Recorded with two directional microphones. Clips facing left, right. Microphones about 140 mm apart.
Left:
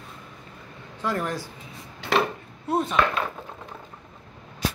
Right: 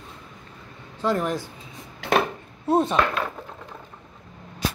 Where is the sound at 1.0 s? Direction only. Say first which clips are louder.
Right 4 dB; 20° right (ahead or behind).